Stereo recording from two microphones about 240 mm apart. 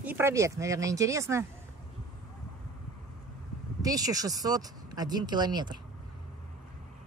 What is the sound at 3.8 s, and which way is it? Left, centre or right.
Speech, centre.